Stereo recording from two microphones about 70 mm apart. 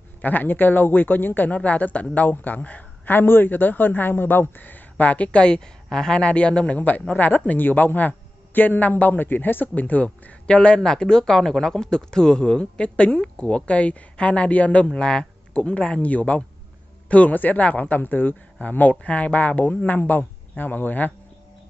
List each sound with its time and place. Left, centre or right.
0.2 s speech: left